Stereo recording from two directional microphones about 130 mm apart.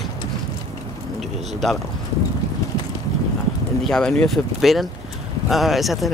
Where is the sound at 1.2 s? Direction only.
Centre (ahead or behind).